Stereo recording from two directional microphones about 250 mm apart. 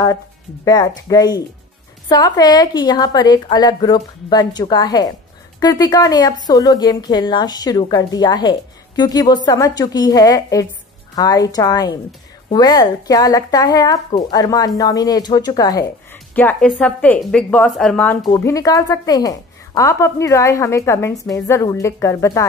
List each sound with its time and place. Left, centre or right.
0.7 s a woman's voice: centre